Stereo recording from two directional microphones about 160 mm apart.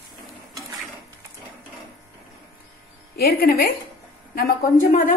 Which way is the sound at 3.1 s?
70° left (ahead or behind).